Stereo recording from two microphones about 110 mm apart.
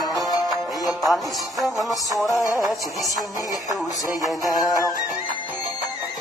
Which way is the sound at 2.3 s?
30° left (ahead or behind).